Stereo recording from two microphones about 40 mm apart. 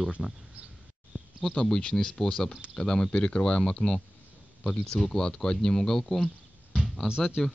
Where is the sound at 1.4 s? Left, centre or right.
Centre.